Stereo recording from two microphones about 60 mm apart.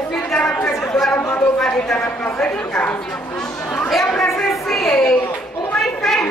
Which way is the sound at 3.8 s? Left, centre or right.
Centre.